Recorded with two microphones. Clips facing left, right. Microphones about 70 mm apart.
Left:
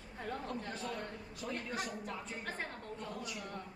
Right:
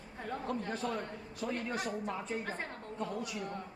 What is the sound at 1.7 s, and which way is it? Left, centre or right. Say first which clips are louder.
Speech: right 4 dB; right.